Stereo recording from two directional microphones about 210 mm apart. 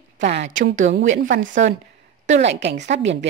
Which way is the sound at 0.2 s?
55° right (ahead or behind).